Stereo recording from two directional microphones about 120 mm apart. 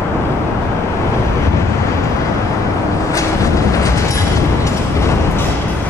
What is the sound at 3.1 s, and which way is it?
Vehicle, 25° left (ahead or behind).